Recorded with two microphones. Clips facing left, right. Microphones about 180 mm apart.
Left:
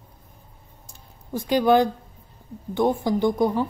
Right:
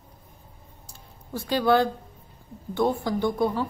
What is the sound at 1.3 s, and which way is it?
A woman's voice, 15° left (ahead or behind).